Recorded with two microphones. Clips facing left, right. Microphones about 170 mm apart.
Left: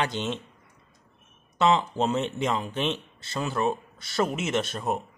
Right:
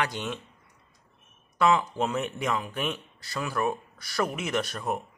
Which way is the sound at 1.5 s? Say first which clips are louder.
Left 1 dB; 25° left (ahead or behind).